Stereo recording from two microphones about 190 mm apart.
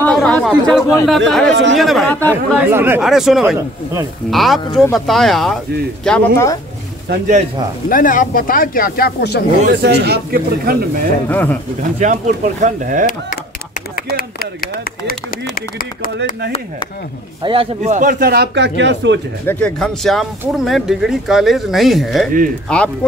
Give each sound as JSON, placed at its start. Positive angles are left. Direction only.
{"t": 0.0, "sound": "chatter", "side_deg": 5}
{"t": 1.0, "sound": "speech", "side_deg": 0}
{"t": 1.5, "sound": "speech", "side_deg": -75}
{"t": 1.8, "sound": "speech", "side_deg": 0}
{"t": 2.5, "sound": "speech", "side_deg": -10}
{"t": 7.9, "sound": "speech", "side_deg": 45}
{"t": 9.7, "sound": "speech", "side_deg": -60}
{"t": 11.2, "sound": "speech", "side_deg": 10}
{"t": 12.0, "sound": "speech", "side_deg": -40}
{"t": 13.9, "sound": "speech", "side_deg": 50}
{"t": 17.4, "sound": "speech", "side_deg": -30}
{"t": 17.9, "sound": "speech", "side_deg": -50}
{"t": 19.4, "sound": "speech", "side_deg": 5}